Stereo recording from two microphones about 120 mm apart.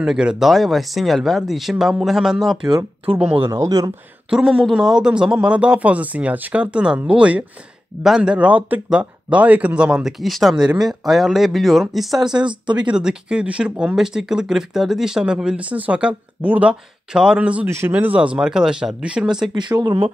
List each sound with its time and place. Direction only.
0.0 s speech: 5° right (ahead or behind)
3.4 s speech: 25° right (ahead or behind)
4.3 s speech: 5° right (ahead or behind)
12.4 s speech: 40° right (ahead or behind)
12.9 s speech: 5° right (ahead or behind)
17.6 s speech: 20° right (ahead or behind)
17.9 s speech: 10° right (ahead or behind)
19.5 s speech: 35° right (ahead or behind)